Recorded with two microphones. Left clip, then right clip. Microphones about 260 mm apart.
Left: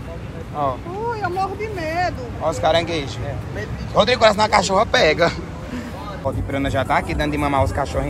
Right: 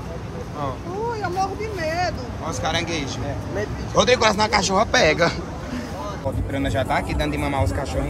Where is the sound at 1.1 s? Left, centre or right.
Left.